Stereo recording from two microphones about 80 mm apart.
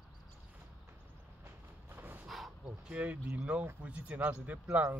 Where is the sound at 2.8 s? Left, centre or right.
Centre.